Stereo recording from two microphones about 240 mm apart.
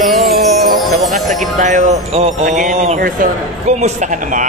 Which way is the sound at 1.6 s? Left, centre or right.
Right.